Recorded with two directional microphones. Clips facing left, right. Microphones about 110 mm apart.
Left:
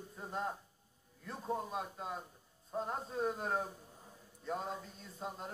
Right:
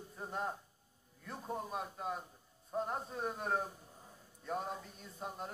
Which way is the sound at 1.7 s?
20° left (ahead or behind).